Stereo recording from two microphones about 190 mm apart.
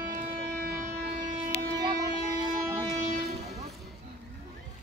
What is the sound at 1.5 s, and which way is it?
Music, 60° left (ahead or behind).